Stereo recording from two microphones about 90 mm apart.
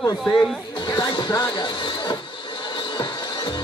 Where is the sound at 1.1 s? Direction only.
55° left (ahead or behind).